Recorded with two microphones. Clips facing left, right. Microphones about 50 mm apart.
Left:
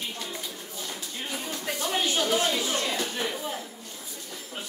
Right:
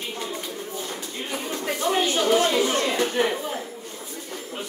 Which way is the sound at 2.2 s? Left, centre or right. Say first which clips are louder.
Right 6 dB; right.